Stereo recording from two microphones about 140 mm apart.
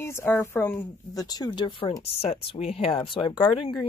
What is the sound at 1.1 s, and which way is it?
Speech, 30° left (ahead or behind).